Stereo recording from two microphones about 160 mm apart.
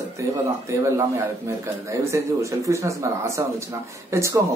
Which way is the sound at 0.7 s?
15° right (ahead or behind).